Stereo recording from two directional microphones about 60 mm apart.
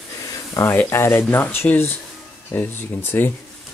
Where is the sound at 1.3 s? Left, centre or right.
Left.